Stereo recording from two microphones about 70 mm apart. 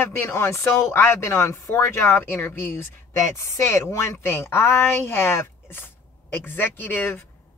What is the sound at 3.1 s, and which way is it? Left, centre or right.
Speech, left.